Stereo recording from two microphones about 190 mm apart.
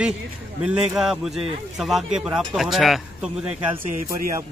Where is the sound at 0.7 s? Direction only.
Centre (ahead or behind).